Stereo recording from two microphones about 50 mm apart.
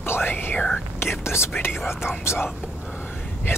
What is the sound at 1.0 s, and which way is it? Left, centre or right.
Whispering, left.